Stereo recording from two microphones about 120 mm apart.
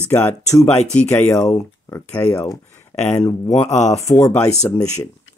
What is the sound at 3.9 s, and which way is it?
Speech, 25° left (ahead or behind).